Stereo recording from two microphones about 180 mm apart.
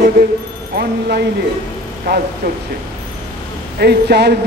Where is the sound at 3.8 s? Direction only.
65° right (ahead or behind).